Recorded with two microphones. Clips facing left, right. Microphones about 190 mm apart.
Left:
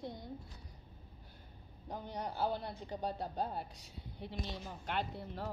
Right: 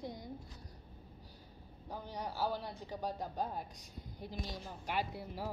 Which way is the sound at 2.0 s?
10° right (ahead or behind).